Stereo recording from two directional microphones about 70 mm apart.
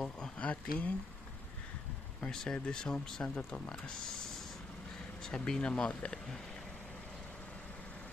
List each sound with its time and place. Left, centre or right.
0.4 s speech: left
2.3 s speech: centre